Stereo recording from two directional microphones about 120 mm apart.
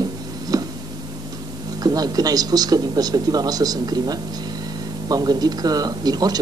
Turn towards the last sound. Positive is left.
turn(degrees=-35)  # may be behind; listen again after turning